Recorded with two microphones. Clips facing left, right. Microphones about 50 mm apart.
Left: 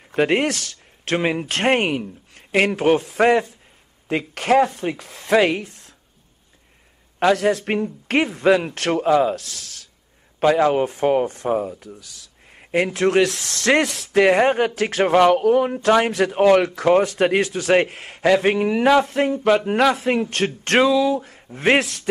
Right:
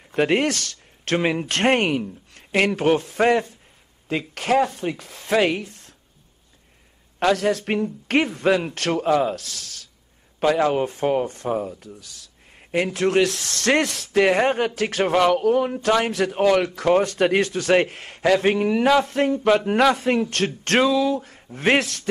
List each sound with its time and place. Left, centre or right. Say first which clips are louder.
0.0 s a man's voice: left 1 dB; centre
4.1 s speech: left 3 dB; left
7.3 s speech: left 2 dB; left
10.4 s a man's voice: left 3 dB; centre
12.4 s a sound: left 3 dB; left
12.8 s a man's voice: left 2 dB; left; by 14.6 s centre
14.6 s speech: left 3 dB; left
15.0 s a man's voice: left 4 dB; centre
15.3 s speech: left 2 dB; left
16.1 s speech: left 4 dB; left
16.8 s a man's voice: left 2 dB; centre
21.3 s a man's voice: left 2 dB; centre